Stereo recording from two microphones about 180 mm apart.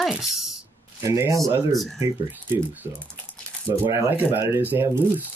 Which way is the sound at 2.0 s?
15° right (ahead or behind).